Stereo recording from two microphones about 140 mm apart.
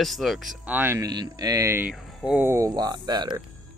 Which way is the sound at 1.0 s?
30° right (ahead or behind).